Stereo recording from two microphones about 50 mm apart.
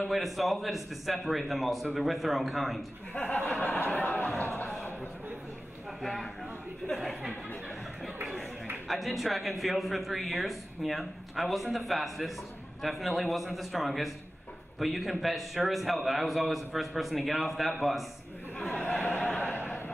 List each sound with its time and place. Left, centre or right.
0.1 s a man's voice: centre
3.2 s chuckle: left
3.9 s speech: left
7.0 s a man's voice: centre
8.8 s a man's voice: centre
18.7 s a sound: left
19.0 s a sound: centre